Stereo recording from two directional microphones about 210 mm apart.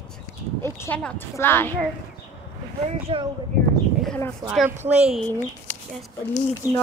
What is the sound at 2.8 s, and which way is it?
Speech, 25° right (ahead or behind).